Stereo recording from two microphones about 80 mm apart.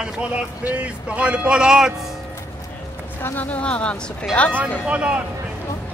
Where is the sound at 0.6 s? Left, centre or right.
Right.